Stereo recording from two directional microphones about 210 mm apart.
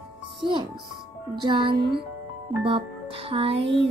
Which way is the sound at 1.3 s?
20° right (ahead or behind).